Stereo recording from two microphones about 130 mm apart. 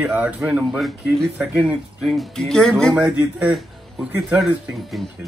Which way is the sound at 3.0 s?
10° right (ahead or behind).